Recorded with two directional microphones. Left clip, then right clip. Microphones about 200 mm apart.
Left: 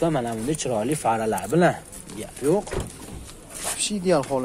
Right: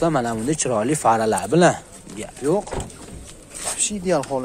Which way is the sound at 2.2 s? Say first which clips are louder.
Right 1 dB; centre (ahead or behind).